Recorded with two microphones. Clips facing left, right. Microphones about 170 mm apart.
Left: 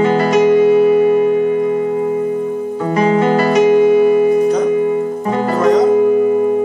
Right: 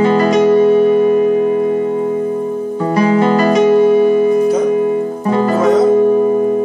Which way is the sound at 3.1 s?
35° right (ahead or behind).